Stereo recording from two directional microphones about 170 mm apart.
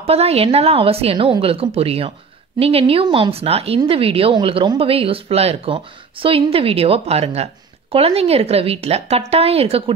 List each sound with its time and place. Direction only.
0.0 s speech: 35° right (ahead or behind)